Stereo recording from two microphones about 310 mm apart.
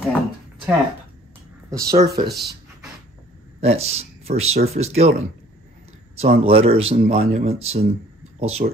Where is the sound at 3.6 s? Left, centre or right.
Centre.